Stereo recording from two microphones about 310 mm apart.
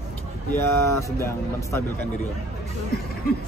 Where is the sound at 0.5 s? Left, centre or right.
Centre.